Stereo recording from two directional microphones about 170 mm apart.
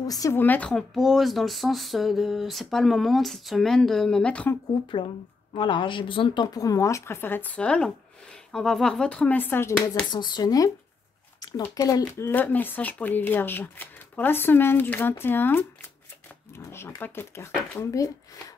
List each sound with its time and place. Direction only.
0.0 s speech: 20° left (ahead or behind)
4.9 s a woman's voice: 30° left (ahead or behind); by 9.8 s 15° left (ahead or behind)
10.1 s a woman's voice: 25° left (ahead or behind)